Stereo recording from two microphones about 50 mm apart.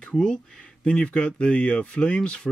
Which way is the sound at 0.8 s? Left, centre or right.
Left.